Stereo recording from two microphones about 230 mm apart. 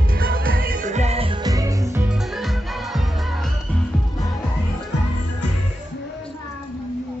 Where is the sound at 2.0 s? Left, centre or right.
Centre.